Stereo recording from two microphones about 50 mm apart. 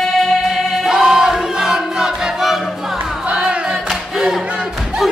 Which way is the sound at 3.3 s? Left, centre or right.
Right.